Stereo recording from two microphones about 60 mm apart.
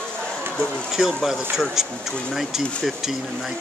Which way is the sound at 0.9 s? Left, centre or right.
Centre.